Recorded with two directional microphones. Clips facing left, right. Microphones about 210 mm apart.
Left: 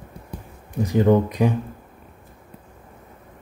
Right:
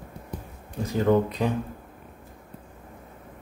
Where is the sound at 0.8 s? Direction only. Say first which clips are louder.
Left 4 dB; 15° left (ahead or behind).